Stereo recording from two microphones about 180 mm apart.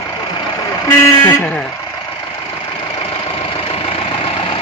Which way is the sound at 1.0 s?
15° left (ahead or behind).